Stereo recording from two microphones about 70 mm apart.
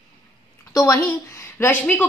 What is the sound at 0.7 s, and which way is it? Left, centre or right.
Speech, left.